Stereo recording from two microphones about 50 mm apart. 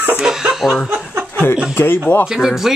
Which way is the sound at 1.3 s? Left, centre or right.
Left.